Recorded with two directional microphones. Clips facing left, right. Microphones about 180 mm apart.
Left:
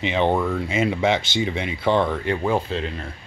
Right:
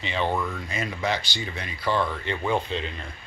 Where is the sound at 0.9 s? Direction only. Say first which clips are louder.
Left 7 dB; 25° left (ahead or behind).